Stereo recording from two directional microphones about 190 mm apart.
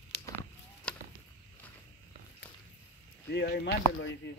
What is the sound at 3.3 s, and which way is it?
Speech, 60° left (ahead or behind).